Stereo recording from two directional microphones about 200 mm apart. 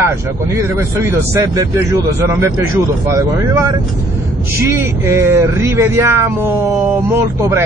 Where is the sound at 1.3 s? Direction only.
15° right (ahead or behind).